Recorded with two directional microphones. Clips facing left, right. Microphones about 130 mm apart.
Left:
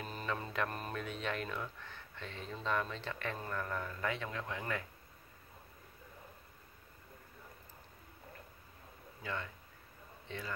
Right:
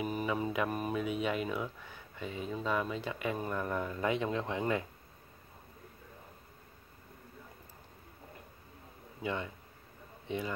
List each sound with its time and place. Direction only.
0.0 s speech: 10° right (ahead or behind)
9.2 s speech: 15° right (ahead or behind)